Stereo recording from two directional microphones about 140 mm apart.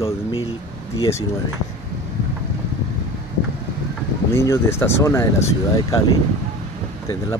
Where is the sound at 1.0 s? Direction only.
20° left (ahead or behind).